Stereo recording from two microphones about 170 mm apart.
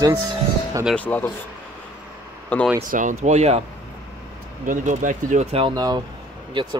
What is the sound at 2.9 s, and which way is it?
Speech, 50° right (ahead or behind).